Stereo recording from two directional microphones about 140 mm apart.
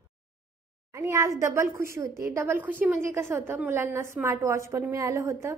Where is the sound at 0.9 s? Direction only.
20° right (ahead or behind).